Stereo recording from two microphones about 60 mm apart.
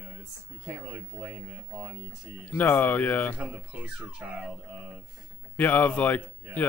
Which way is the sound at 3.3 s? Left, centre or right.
Right.